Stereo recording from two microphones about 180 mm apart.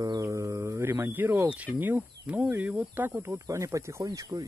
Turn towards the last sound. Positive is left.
turn(degrees=-20)  # may be behind; listen again after turning